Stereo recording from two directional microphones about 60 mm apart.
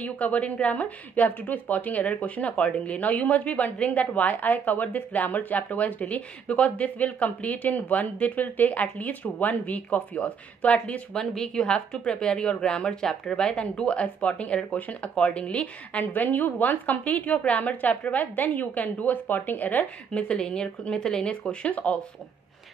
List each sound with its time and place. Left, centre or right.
0.0 s a woman's voice: left
11.2 s a woman's voice: centre; by 19.9 s left
20.1 s speech: centre